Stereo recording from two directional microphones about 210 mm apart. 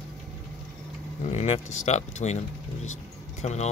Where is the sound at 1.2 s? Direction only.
30° left (ahead or behind).